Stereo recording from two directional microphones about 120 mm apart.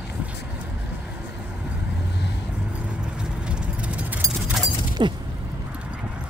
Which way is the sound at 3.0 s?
10° right (ahead or behind).